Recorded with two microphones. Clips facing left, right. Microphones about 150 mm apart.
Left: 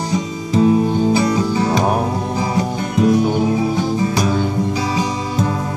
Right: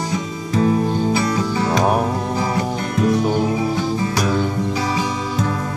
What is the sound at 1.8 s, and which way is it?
Music, centre (ahead or behind).